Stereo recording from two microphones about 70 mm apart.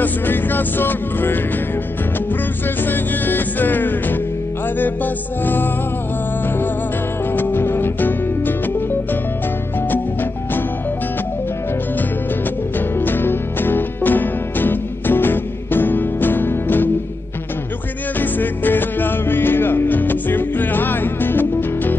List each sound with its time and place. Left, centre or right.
0.0 s music: left
2.8 s music: left
7.3 s music: left
12.7 s music: left
18.2 s music: left